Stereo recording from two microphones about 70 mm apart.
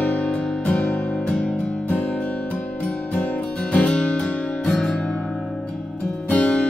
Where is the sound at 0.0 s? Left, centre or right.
Centre.